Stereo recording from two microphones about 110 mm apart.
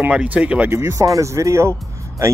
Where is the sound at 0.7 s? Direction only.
25° right (ahead or behind).